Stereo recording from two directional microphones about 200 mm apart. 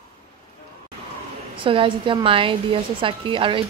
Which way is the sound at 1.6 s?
25° right (ahead or behind).